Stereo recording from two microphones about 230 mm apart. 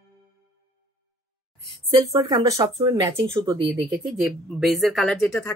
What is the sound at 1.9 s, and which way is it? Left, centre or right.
Speech, centre.